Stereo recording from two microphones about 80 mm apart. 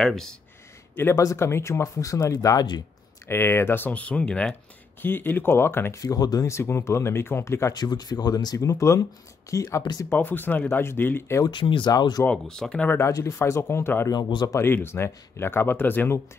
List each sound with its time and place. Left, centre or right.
0.0 s speech: centre
1.1 s speech: left
2.3 s speech: left
3.3 s speech: left; by 4.6 s centre
5.0 s speech: left
5.9 s speech: left
6.5 s speech: left
7.7 s speech: left
8.5 s speech: left
10.0 s speech: left
11.5 s speech: left
11.9 s speech: left
12.3 s speech: centre
12.8 s speech: left